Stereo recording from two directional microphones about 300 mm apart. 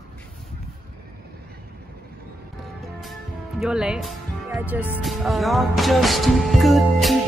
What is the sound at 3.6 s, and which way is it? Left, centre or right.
Speech, centre.